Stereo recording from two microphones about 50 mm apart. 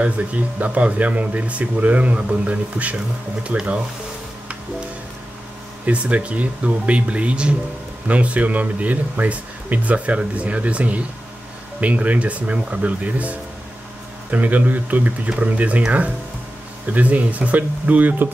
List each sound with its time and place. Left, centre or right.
0.0 s speech: right
5.9 s speech: right
16.9 s speech: right